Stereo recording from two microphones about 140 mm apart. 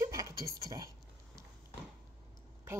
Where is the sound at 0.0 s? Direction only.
25° right (ahead or behind).